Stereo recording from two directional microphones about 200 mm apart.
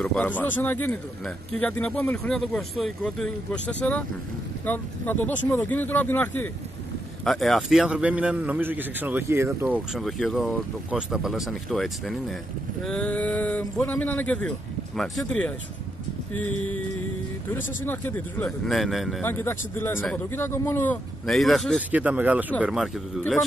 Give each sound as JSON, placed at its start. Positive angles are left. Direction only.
{"t": 0.0, "sound": "a man's voice", "side_deg": 5}
{"t": 9.9, "sound": "speech", "side_deg": 0}
{"t": 19.2, "sound": "speech", "side_deg": 10}